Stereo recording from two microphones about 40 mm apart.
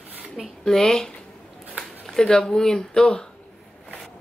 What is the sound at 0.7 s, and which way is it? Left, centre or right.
Speech, centre.